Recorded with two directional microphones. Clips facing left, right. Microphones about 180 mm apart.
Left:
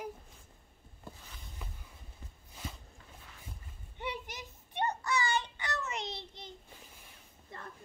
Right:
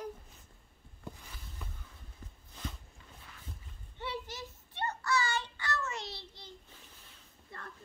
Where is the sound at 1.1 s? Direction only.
15° right (ahead or behind).